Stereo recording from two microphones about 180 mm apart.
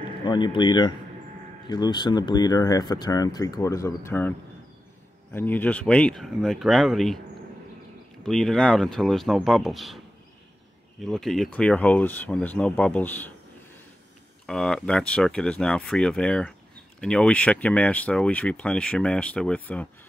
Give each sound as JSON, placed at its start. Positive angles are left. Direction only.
{"t": 0.2, "sound": "speech", "side_deg": 25}
{"t": 5.3, "sound": "speech", "side_deg": 10}
{"t": 8.2, "sound": "speech", "side_deg": 5}
{"t": 14.4, "sound": "speech", "side_deg": 5}